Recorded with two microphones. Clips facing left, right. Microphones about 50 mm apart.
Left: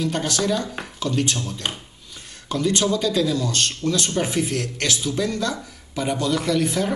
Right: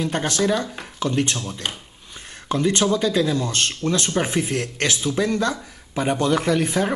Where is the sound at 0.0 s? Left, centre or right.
Right.